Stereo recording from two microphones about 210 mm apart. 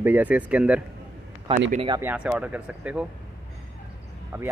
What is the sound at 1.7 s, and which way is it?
Speech, 25° right (ahead or behind).